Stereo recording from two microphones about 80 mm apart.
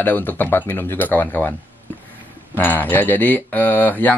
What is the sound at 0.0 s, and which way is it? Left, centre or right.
Speech, left.